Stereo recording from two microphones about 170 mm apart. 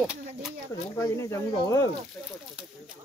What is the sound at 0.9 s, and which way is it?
Speech, 15° left (ahead or behind).